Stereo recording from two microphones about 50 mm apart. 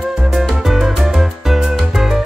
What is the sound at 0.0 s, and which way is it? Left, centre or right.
Music, centre.